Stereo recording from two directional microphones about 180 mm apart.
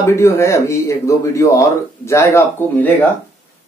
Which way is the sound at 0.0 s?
15° left (ahead or behind).